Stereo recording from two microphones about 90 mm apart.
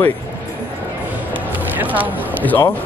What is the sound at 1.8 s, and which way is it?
Speech, 20° right (ahead or behind).